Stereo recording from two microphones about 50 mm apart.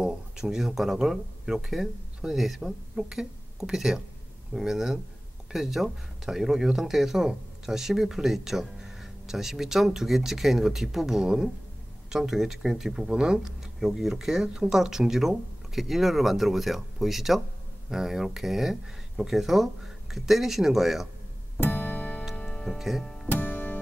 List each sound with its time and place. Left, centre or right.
0.0 s speech: centre
21.5 s music: left
22.3 s music: left
22.8 s speech: centre
23.3 s music: left